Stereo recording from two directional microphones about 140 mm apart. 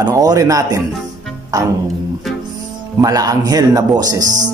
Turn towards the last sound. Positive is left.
turn(degrees=-25)  # may be behind; listen again after turning